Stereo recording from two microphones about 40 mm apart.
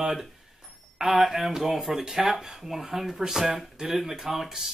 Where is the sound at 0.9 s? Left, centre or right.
Centre.